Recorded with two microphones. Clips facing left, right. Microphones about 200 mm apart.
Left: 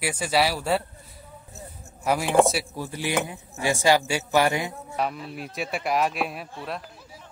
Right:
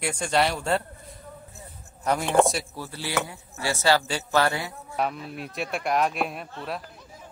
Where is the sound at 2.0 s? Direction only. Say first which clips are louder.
Left 1 dB; 5° left (ahead or behind).